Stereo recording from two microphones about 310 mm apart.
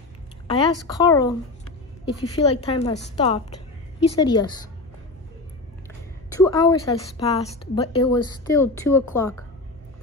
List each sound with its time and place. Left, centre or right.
0.5 s a woman's voice: centre
6.3 s a woman's voice: centre